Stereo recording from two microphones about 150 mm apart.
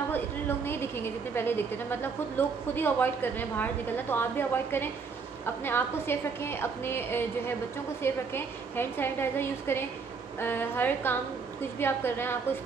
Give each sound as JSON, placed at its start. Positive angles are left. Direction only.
{"t": 0.1, "sound": "a woman's voice", "side_deg": 15}